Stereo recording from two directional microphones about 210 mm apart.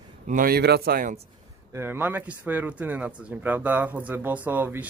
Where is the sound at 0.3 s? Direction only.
45° right (ahead or behind).